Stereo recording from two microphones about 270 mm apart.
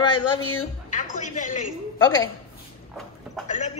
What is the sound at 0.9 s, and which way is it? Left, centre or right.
Music, left.